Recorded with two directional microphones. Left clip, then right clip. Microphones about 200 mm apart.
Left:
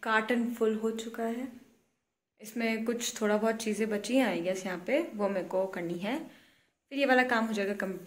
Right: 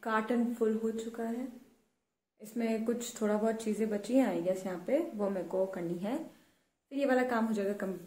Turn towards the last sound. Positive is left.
turn(degrees=0)  # may be behind; listen again after turning